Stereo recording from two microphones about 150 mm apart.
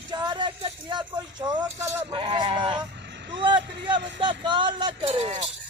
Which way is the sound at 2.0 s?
30° right (ahead or behind).